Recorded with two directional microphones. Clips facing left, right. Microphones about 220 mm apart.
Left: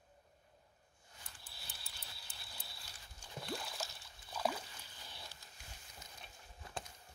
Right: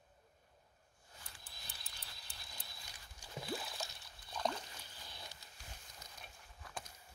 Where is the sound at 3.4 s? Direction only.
Centre (ahead or behind).